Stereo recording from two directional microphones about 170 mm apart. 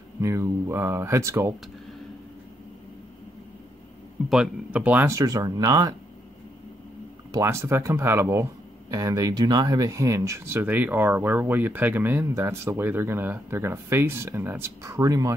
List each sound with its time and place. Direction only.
0.2 s speech: 15° right (ahead or behind)
4.3 s speech: 5° right (ahead or behind)
7.3 s speech: 15° right (ahead or behind)